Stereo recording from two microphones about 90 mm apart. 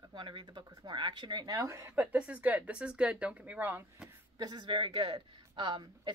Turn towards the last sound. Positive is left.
turn(degrees=-60)  # may be behind; listen again after turning